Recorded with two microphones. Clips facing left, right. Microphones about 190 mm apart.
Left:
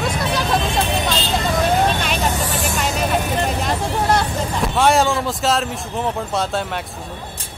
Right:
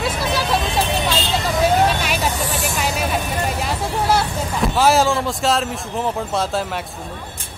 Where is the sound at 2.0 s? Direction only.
5° right (ahead or behind).